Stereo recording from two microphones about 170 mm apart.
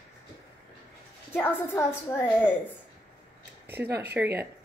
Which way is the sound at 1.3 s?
15° left (ahead or behind).